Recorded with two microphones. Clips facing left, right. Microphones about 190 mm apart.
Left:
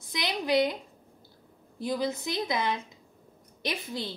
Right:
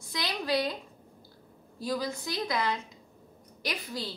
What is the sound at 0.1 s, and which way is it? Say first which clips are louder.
Speech: left 3 dB; 20° left (ahead or behind).